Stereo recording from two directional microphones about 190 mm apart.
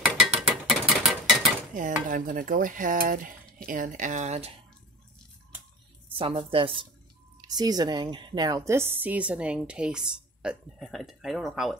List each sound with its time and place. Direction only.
0.1 s mechanisms: centre (ahead or behind)
1.8 s dishes: 45° right (ahead or behind)
3.6 s speech: 45° right (ahead or behind)
6.1 s a woman's voice: 30° right (ahead or behind); by 11.7 s centre (ahead or behind)